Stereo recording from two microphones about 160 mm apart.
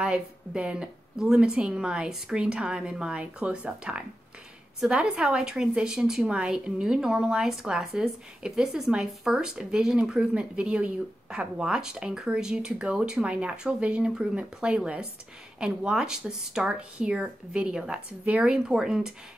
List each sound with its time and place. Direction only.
0.0 s a woman's voice: 5° right (ahead or behind)